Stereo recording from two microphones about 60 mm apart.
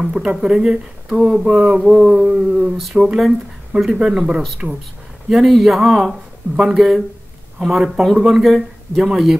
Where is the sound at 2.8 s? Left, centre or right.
Centre.